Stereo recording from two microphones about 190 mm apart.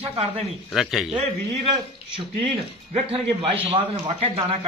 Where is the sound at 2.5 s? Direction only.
30° right (ahead or behind).